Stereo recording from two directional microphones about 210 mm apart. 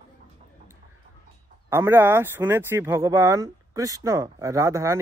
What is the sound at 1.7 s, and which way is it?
Speech, 10° right (ahead or behind).